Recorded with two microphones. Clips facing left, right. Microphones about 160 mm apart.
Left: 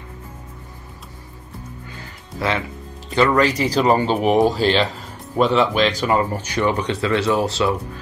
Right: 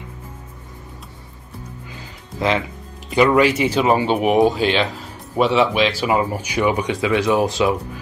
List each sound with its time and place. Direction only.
2.0 s music: 15° right (ahead or behind)
3.2 s a man's voice: 10° right (ahead or behind)